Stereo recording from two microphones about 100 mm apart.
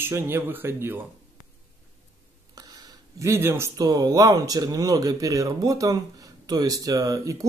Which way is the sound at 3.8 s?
40° right (ahead or behind).